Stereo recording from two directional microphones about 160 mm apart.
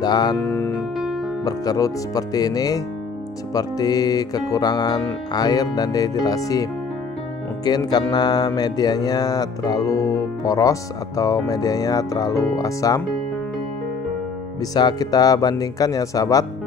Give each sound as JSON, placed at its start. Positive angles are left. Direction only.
{"t": 0.0, "sound": "music", "side_deg": 25}
{"t": 0.9, "sound": "music", "side_deg": 0}
{"t": 1.4, "sound": "music", "side_deg": 25}
{"t": 14.6, "sound": "music", "side_deg": 25}